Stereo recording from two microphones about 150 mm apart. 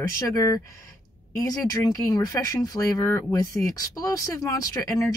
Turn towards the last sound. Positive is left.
turn(degrees=25)  # may be behind; listen again after turning